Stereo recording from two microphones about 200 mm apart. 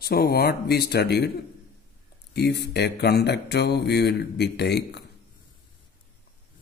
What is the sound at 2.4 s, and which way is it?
Speech, 55° left (ahead or behind).